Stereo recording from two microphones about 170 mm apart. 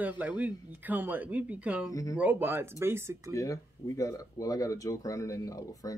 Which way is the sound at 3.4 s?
20° left (ahead or behind).